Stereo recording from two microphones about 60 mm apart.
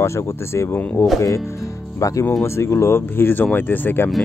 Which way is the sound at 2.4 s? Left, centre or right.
Left.